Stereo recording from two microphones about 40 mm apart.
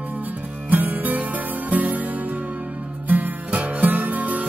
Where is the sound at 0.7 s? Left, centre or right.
Right.